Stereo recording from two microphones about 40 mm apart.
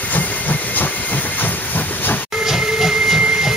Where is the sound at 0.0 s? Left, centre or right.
Left.